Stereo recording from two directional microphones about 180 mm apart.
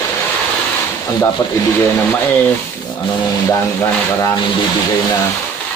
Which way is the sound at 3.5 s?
20° left (ahead or behind).